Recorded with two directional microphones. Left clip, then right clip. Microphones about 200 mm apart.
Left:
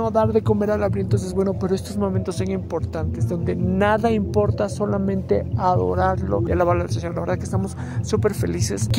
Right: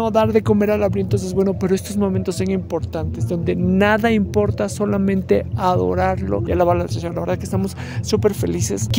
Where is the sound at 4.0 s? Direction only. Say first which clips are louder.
Right 2 dB; 45° right (ahead or behind).